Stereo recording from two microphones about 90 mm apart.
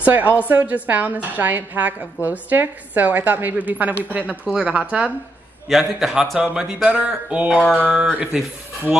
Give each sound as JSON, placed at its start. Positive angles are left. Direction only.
{"t": 0.0, "sound": "music", "side_deg": -20}
{"t": 0.8, "sound": "a woman's voice", "side_deg": -20}
{"t": 4.6, "sound": "music", "side_deg": -15}
{"t": 5.7, "sound": "a man's voice", "side_deg": 0}
{"t": 6.4, "sound": "music", "side_deg": -10}